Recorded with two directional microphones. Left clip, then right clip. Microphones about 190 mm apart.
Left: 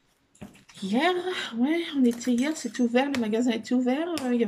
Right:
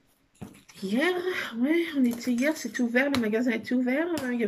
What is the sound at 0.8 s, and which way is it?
Speech, 15° left (ahead or behind).